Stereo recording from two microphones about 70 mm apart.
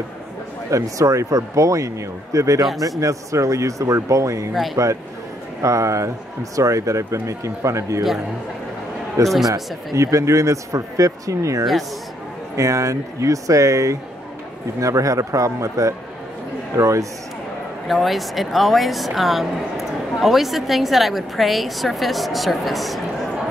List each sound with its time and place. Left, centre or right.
0.7 s speech: right
9.2 s speech: right
17.8 s a woman's voice: centre